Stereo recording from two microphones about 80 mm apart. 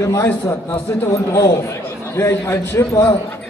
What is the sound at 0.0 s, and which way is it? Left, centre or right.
A man's voice, left.